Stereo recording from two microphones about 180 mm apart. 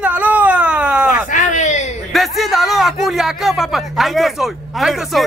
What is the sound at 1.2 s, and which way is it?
Speech, 45° left (ahead or behind).